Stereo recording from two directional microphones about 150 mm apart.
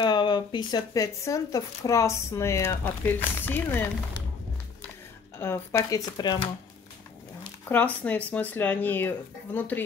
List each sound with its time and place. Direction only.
0.0 s speech: 30° left (ahead or behind); by 3.9 s 15° left (ahead or behind)
5.4 s speech: 15° left (ahead or behind)
7.6 s speech: 10° left (ahead or behind)